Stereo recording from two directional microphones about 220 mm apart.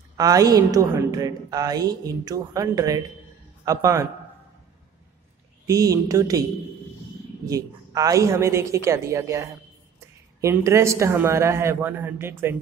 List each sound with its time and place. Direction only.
0.2 s a woman's voice: 15° right (ahead or behind)
5.7 s a woman's voice: 15° right (ahead or behind)
7.4 s a woman's voice: 15° right (ahead or behind)